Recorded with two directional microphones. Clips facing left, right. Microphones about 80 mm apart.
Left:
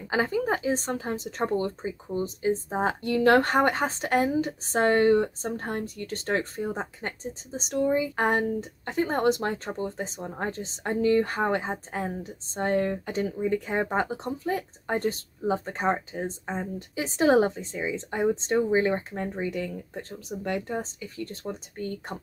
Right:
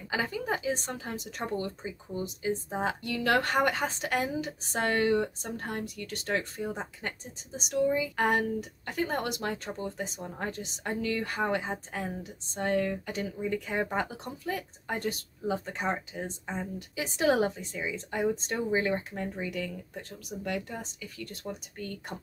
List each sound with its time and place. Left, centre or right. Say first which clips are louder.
0.1 s speech: left 6 dB; left